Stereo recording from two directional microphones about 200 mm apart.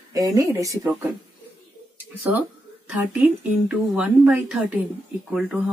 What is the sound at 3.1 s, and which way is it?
Speech, 5° right (ahead or behind).